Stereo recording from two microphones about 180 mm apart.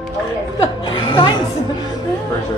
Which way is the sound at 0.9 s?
25° left (ahead or behind).